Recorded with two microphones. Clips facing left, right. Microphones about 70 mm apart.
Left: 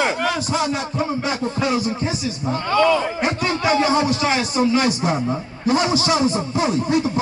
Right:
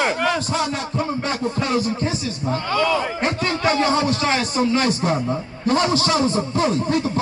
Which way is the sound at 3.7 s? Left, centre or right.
Centre.